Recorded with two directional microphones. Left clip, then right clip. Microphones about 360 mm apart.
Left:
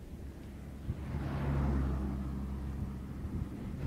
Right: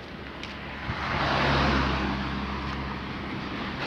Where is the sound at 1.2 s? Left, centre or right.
Right.